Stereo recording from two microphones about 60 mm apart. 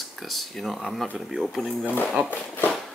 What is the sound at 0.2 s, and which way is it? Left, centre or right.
Speech, centre.